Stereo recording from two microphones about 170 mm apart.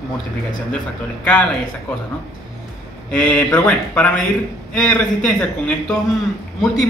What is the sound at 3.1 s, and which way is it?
A man's voice, 5° left (ahead or behind).